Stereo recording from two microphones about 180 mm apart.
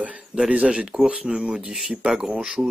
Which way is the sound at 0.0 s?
5° right (ahead or behind).